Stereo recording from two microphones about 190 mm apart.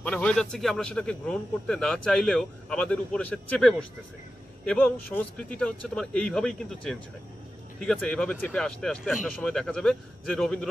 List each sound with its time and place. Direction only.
0.0 s speech: 5° left (ahead or behind)